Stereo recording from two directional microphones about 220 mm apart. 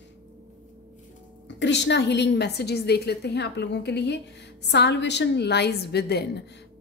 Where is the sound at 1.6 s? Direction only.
50° left (ahead or behind).